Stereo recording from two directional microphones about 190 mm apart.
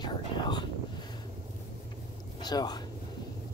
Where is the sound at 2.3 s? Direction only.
20° left (ahead or behind).